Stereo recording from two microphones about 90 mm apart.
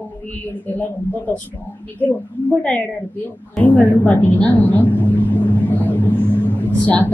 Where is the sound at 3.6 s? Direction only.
20° left (ahead or behind).